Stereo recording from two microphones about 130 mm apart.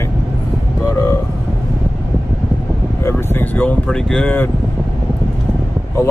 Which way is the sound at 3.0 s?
20° left (ahead or behind).